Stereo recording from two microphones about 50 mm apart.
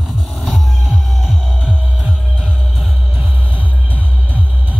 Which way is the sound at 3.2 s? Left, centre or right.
Right.